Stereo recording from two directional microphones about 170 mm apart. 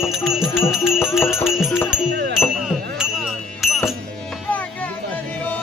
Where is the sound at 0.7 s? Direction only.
Centre (ahead or behind).